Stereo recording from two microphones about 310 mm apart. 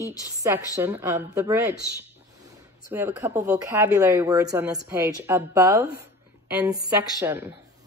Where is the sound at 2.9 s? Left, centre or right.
Centre.